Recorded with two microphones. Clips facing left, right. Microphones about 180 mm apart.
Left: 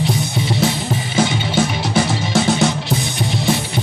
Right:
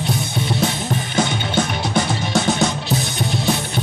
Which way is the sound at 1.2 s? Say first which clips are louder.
Left 3 dB; 5° left (ahead or behind).